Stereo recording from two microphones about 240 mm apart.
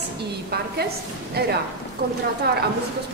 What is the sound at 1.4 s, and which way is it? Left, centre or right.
Mantra, right.